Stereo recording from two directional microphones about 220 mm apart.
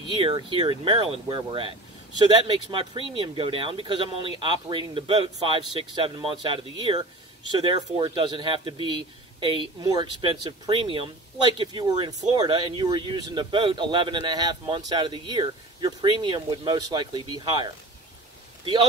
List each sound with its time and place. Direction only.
0.2 s speech: 25° right (ahead or behind)